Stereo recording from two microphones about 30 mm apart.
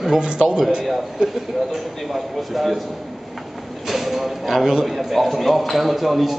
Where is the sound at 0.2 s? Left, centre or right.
Right.